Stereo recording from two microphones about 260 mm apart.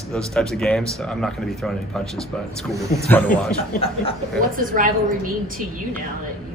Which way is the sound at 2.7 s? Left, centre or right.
Centre.